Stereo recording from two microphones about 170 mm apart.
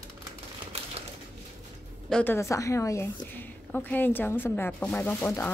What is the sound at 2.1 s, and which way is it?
Speech, 10° left (ahead or behind).